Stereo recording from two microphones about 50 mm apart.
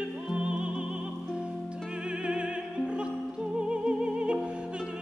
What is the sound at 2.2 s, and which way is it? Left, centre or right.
Music, centre.